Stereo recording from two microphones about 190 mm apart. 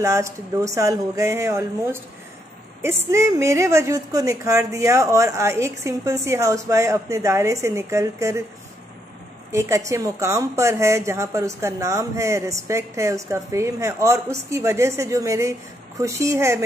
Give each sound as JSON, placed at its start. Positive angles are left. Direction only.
{"t": 0.0, "sound": "a woman's voice", "side_deg": -15}
{"t": 3.1, "sound": "a woman's voice", "side_deg": -15}
{"t": 9.5, "sound": "a woman's voice", "side_deg": -15}